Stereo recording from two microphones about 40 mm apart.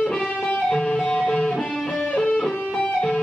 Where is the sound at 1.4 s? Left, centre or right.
Centre.